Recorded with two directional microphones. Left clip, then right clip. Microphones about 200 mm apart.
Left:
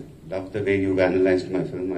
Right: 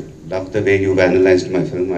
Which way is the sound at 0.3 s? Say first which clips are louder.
Right 8 dB; 40° right (ahead or behind).